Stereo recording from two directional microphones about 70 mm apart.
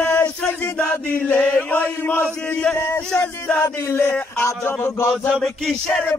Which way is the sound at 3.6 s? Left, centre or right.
Left.